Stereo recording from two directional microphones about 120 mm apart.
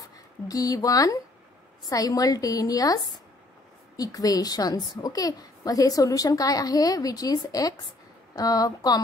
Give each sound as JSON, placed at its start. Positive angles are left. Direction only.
{"t": 0.5, "sound": "a woman's voice", "side_deg": 30}